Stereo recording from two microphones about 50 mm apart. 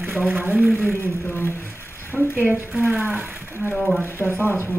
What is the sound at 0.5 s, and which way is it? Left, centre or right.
Speech, right.